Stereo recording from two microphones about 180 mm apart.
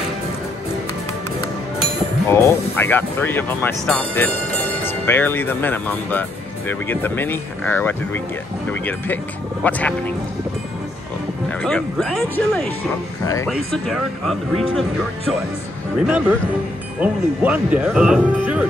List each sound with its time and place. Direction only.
2.2 s speech: 10° left (ahead or behind)
11.6 s speech: 5° left (ahead or behind)
13.2 s speech: 20° left (ahead or behind)
13.7 s speech: centre (ahead or behind)
16.0 s speech: 5° right (ahead or behind)